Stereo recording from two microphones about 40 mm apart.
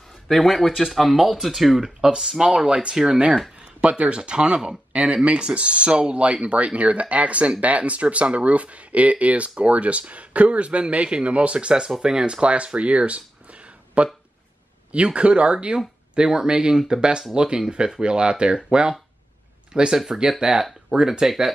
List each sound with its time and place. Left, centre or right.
0.3 s speech: centre
1.8 s speech: centre
4.9 s speech: right
15.0 s speech: right